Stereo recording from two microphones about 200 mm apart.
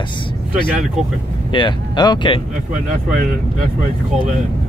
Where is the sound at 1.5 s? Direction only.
20° left (ahead or behind).